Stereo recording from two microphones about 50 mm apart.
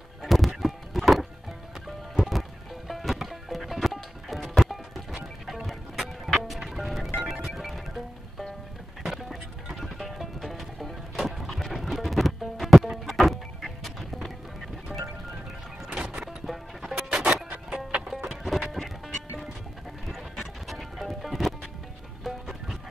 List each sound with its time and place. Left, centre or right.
0.2 s music: centre
14.9 s music: right
16.3 s music: centre
17.6 s music: centre
18.0 s music: centre
18.8 s music: centre
20.3 s music: centre